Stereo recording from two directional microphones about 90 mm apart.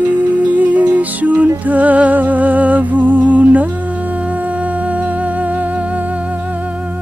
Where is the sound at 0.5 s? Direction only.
15° right (ahead or behind).